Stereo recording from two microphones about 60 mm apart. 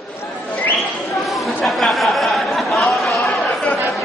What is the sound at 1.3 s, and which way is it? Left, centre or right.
Chatter, centre.